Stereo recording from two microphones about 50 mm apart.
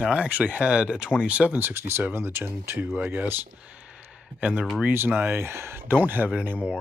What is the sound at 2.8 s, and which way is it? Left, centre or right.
Speech, right.